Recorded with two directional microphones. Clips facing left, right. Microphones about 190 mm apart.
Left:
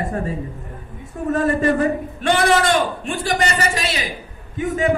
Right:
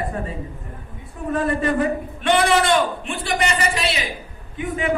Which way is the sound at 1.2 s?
45° left (ahead or behind).